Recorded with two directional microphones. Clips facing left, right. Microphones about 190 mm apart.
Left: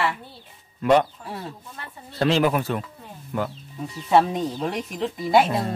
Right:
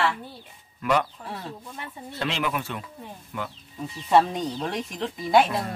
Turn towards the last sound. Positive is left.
turn(degrees=0)  # may be behind; listen again after turning